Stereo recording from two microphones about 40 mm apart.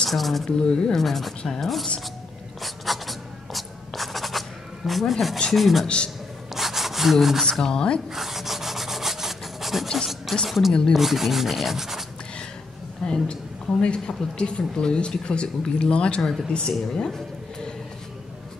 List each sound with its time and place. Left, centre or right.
0.0 s speech: centre
0.5 s a woman's voice: left
0.9 s rub: centre
2.6 s writing: centre
5.5 s rub: centre
7.6 s a woman's voice: left
8.1 s rub: centre
13.0 s a woman's voice: left
16.2 s speech: centre
16.4 s speech: centre